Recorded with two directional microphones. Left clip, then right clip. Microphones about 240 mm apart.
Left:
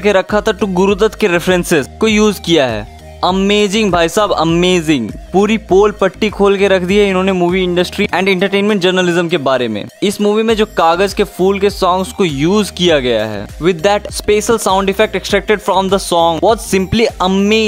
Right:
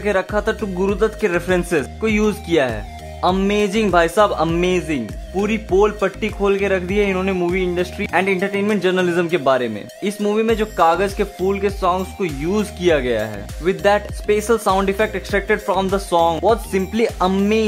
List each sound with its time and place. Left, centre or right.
0.0 s speech: left